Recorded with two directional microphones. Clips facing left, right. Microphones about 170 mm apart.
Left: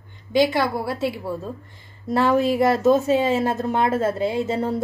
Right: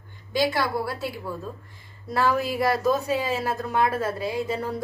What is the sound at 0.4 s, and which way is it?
Speech, 20° left (ahead or behind).